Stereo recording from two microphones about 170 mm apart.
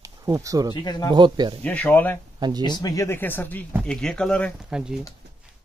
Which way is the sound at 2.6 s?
25° left (ahead or behind).